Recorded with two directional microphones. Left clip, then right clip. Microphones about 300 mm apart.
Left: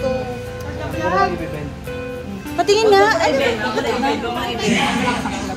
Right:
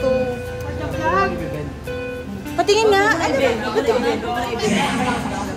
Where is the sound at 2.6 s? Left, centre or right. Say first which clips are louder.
Left 2 dB; centre.